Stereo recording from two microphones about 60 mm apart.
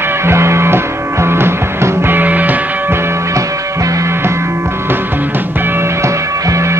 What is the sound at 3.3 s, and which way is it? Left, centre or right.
Music, right.